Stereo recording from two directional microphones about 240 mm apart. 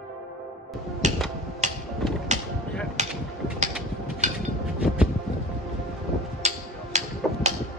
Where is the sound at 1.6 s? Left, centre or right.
Right.